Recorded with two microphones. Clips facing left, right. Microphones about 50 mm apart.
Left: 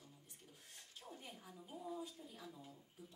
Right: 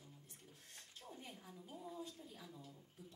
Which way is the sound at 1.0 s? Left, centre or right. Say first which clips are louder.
Even; centre.